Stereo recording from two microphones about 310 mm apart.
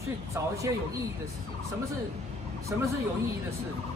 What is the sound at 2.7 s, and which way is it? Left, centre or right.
Speech, centre.